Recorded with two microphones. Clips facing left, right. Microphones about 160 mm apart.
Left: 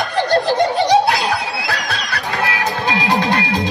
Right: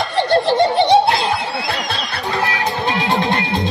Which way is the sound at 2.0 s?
30° right (ahead or behind).